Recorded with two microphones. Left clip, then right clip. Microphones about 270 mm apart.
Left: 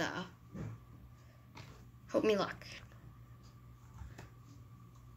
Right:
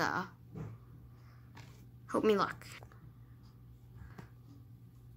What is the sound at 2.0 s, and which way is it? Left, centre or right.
Speech, centre.